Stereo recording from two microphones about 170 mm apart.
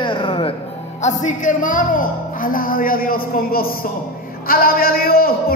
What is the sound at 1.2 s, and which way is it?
Speech, 50° left (ahead or behind).